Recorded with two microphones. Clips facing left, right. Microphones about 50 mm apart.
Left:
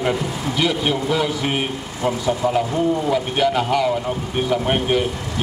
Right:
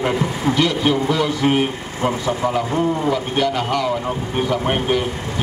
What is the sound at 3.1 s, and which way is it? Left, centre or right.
Speech, centre.